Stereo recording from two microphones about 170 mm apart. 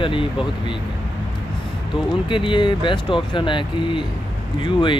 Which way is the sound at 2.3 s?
30° left (ahead or behind).